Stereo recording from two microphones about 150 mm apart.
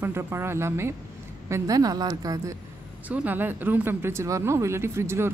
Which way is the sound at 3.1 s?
10° right (ahead or behind).